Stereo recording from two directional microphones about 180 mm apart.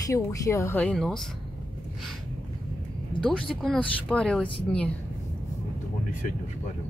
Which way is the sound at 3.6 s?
5° left (ahead or behind).